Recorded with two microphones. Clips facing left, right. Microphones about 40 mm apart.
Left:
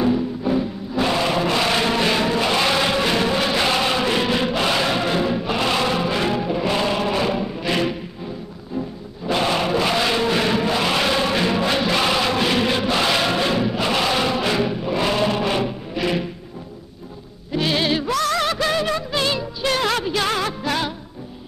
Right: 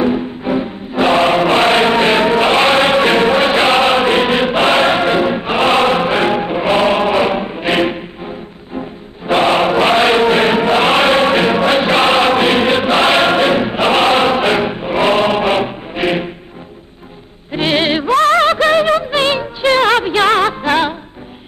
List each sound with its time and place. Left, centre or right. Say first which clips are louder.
0.0 s music: right 4 dB; right
9.3 s chant: right 8 dB; right
17.5 s music: right 6 dB; right